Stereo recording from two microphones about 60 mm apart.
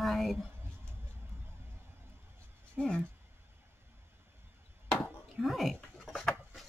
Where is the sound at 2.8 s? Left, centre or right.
Centre.